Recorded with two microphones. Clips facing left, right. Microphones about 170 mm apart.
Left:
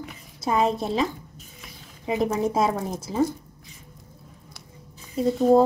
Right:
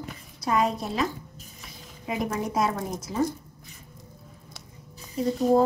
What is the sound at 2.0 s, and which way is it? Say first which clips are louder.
A woman's voice: left 5 dB; 30° left (ahead or behind).